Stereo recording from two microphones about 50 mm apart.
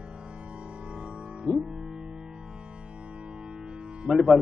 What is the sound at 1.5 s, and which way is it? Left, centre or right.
Music, right.